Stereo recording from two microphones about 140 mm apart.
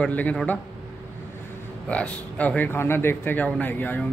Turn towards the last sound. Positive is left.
turn(degrees=10)  # may be behind; listen again after turning